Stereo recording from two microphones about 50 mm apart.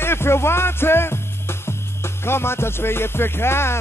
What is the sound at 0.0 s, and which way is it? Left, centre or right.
Speech, left.